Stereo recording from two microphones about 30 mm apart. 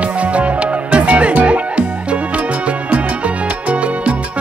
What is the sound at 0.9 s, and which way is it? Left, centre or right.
Music, right.